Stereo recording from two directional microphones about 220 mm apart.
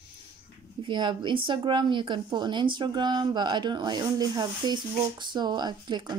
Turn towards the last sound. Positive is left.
turn(degrees=-20)  # may be behind; listen again after turning